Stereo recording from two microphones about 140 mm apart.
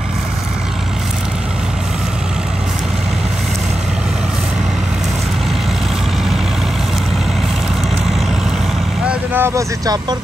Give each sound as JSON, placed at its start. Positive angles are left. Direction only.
{"t": 9.3, "sound": "vehicle", "side_deg": -15}